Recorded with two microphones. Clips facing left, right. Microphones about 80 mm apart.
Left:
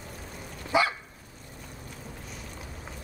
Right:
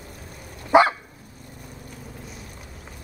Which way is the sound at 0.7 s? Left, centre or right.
Right.